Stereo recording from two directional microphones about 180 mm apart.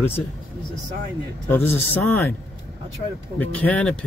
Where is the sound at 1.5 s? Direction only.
10° left (ahead or behind).